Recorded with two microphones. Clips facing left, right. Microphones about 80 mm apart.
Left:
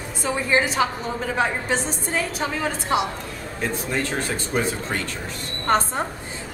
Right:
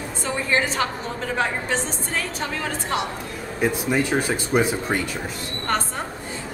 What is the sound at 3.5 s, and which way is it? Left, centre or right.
Speech, centre.